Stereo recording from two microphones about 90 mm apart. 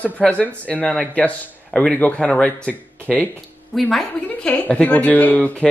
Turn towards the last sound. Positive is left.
turn(degrees=15)  # may be behind; listen again after turning